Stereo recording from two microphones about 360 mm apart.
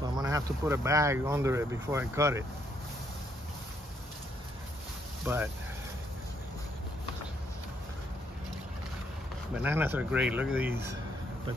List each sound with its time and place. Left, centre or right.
0.0 s speech: centre
5.2 s speech: centre
9.5 s speech: centre